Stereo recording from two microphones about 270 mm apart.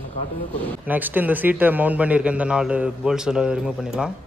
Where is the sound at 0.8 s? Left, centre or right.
Centre.